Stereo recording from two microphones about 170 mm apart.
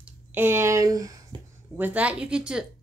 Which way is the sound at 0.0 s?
10° right (ahead or behind).